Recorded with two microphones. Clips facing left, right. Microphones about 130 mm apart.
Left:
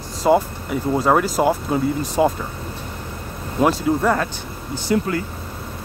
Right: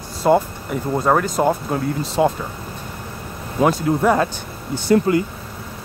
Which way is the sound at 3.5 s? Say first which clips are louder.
Even; centre (ahead or behind).